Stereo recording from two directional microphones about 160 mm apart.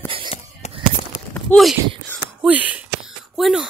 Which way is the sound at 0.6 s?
45° left (ahead or behind).